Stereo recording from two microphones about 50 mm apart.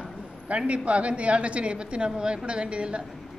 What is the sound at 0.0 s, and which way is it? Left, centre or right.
Speech, right.